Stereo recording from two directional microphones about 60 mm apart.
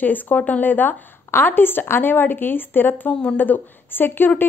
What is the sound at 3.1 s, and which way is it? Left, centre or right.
Speech, centre.